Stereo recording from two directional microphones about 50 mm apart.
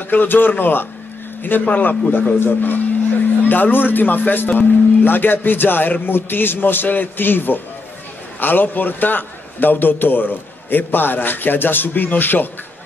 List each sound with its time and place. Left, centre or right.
0.1 s a man's voice: left